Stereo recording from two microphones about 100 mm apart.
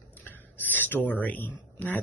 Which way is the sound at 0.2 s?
20° left (ahead or behind).